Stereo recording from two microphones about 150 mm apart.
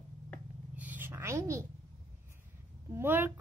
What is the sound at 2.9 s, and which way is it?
Speech, 15° right (ahead or behind).